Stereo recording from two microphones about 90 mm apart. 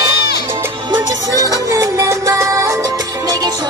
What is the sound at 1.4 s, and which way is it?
Music, 35° right (ahead or behind).